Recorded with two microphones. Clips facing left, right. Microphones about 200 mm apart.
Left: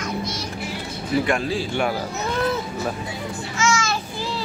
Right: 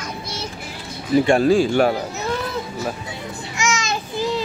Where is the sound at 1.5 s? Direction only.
45° right (ahead or behind).